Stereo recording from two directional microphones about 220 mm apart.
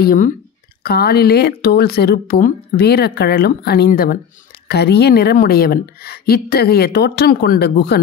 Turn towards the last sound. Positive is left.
turn(degrees=45)  # may be behind; listen again after turning